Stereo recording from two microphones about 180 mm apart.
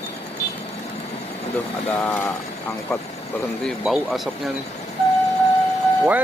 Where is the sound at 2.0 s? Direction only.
10° left (ahead or behind).